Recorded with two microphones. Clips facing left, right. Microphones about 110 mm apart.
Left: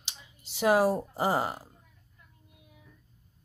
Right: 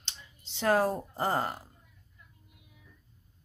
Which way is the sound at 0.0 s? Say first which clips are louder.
Even; 10° left (ahead or behind).